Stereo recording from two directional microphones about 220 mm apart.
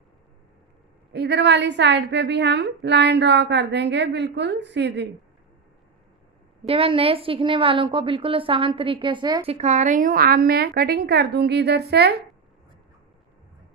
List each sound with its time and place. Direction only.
1.1 s a woman's voice: 50° right (ahead or behind)
6.6 s a woman's voice: 25° right (ahead or behind); by 12.2 s 50° right (ahead or behind)